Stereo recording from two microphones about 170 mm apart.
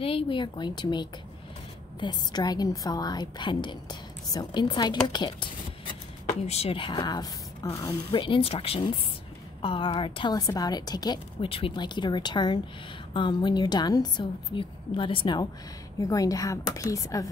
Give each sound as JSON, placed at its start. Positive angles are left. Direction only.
{"t": 0.0, "sound": "a woman's voice", "side_deg": 30}
{"t": 6.4, "sound": "a woman's voice", "side_deg": 35}